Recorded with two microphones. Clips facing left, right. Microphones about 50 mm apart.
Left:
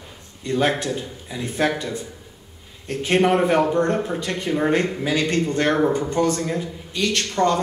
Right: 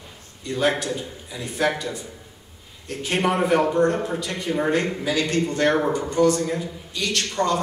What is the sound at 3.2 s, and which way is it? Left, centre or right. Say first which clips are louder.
Speech: left 4 dB; centre.